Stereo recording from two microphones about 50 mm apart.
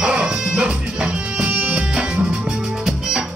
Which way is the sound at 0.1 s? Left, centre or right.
Centre.